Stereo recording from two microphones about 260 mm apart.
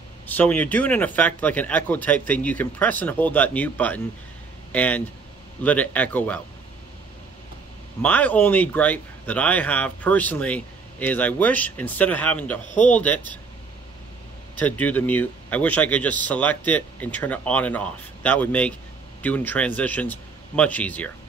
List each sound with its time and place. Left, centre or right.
0.3 s speech: centre
8.0 s speech: centre
12.6 s a man's voice: left
12.9 s speech: centre
14.6 s speech: centre